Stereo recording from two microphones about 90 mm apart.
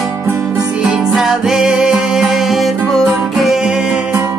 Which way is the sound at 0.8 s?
10° right (ahead or behind).